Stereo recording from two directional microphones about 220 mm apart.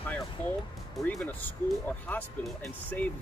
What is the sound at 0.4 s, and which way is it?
Speech, 5° left (ahead or behind).